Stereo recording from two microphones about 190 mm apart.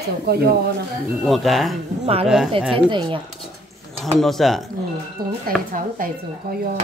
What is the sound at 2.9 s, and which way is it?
Speech, 25° right (ahead or behind).